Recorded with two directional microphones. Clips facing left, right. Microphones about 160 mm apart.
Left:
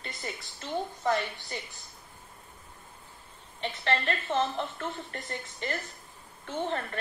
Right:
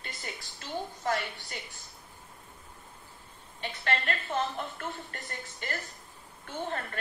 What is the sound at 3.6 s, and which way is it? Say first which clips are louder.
A woman's voice: left 3 dB; 25° left (ahead or behind).